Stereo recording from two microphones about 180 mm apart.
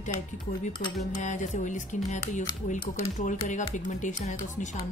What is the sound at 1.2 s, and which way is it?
Speech, 40° left (ahead or behind).